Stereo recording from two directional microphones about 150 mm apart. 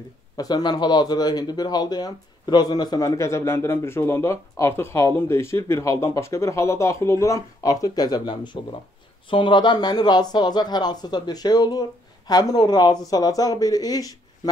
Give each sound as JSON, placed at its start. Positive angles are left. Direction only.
{"t": 0.4, "sound": "speech", "side_deg": 30}